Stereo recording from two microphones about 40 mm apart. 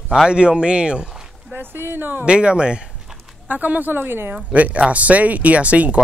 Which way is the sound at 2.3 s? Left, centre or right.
Right.